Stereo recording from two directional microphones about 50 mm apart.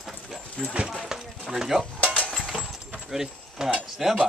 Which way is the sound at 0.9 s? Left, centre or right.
Centre.